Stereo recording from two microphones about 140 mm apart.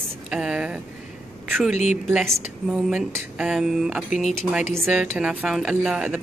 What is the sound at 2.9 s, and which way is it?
Speech, 5° right (ahead or behind).